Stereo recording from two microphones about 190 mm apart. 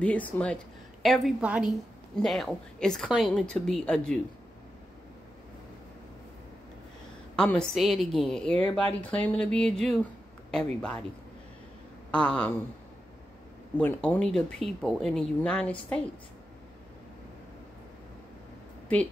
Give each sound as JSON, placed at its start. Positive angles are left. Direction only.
{"t": 0.0, "sound": "speech", "side_deg": 5}
{"t": 7.3, "sound": "speech", "side_deg": 5}
{"t": 12.1, "sound": "speech", "side_deg": 5}
{"t": 13.7, "sound": "speech", "side_deg": 10}